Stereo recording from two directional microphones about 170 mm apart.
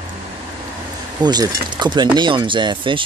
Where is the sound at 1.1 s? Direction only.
25° right (ahead or behind).